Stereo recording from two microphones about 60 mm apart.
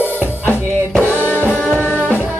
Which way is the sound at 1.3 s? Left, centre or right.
Left.